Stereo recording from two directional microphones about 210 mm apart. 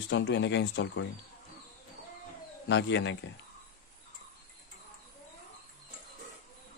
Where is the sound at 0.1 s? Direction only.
60° left (ahead or behind).